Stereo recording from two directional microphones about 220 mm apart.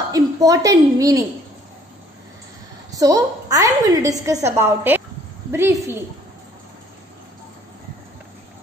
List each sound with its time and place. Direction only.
0.1 s a woman's voice: 15° right (ahead or behind)
2.9 s a woman's voice: 15° right (ahead or behind)